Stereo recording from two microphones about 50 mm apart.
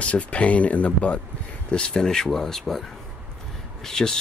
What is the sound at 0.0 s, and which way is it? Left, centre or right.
Speech, left.